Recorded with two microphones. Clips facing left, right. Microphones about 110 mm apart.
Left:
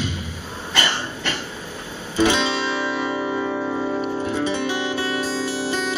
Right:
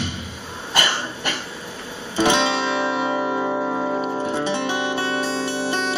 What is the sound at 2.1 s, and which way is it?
Music, 25° right (ahead or behind).